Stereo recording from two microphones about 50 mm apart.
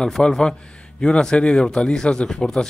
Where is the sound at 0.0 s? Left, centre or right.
Centre.